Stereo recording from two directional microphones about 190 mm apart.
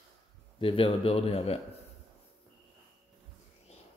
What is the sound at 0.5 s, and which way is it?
Speech, 25° left (ahead or behind).